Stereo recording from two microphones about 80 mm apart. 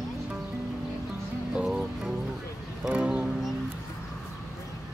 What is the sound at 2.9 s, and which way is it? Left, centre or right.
Music, centre.